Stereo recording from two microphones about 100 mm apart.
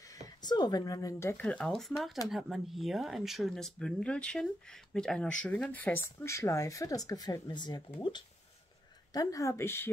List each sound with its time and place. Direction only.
0.1 s speech: 45° left (ahead or behind)
1.4 s speech: 10° left (ahead or behind)
6.2 s speech: 30° left (ahead or behind); by 7.8 s 45° left (ahead or behind)
9.1 s speech: 35° left (ahead or behind)